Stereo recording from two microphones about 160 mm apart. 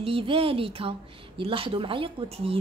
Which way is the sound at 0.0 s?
35° right (ahead or behind).